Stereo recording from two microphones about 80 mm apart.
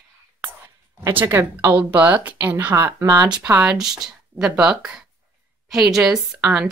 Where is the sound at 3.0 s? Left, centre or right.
Right.